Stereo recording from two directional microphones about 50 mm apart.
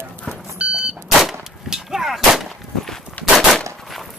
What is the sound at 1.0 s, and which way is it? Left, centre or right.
Gunshot, centre.